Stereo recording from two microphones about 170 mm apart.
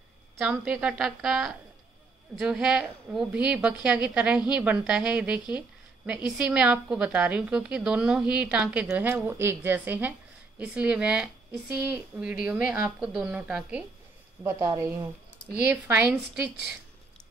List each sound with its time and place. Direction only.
0.4 s a woman's voice: 5° right (ahead or behind)